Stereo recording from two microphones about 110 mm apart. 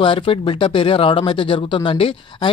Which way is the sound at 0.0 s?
50° left (ahead or behind).